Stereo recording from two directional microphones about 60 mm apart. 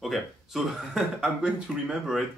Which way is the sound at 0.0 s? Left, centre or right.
Centre.